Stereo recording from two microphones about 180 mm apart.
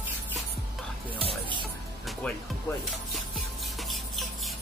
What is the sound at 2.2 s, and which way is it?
Speech, 5° left (ahead or behind).